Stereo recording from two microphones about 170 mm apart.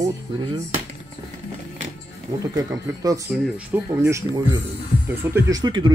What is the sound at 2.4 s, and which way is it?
Speech, 20° right (ahead or behind).